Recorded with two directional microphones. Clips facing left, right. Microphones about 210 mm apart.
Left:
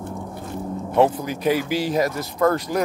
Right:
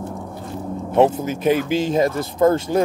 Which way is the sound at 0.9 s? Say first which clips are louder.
Right 2 dB; 20° right (ahead or behind).